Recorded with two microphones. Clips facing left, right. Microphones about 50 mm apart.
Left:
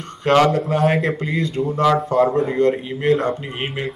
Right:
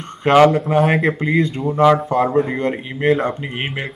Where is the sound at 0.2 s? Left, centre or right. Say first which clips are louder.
Right 3 dB; right.